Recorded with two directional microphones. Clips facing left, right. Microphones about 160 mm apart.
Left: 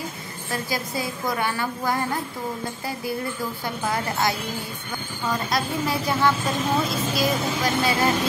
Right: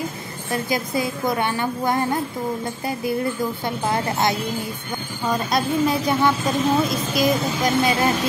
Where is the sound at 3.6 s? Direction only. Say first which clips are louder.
Right 2 dB; 25° right (ahead or behind).